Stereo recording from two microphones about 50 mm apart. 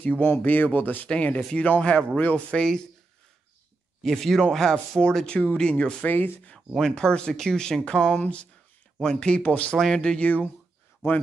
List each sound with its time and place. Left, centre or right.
0.2 s speech: left
1.0 s speech: left
4.0 s speech: centre
6.0 s speech: left
6.7 s speech: centre
8.2 s speech: left
9.4 s speech: left
9.8 s speech: centre
10.2 s speech: left